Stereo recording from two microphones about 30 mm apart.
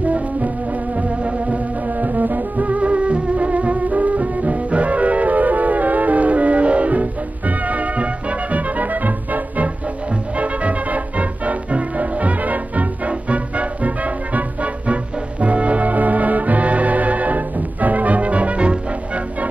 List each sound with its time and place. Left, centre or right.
0.0 s music: right
10.3 s music: right